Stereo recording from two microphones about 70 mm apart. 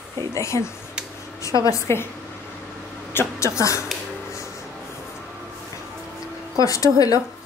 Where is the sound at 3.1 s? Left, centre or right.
Left.